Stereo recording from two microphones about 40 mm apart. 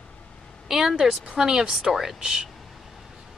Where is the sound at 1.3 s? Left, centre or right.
Centre.